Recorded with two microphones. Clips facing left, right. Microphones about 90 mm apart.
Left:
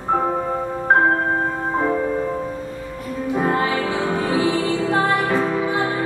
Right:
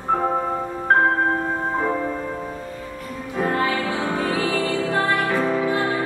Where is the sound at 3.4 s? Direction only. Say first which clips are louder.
Even; 20° left (ahead or behind).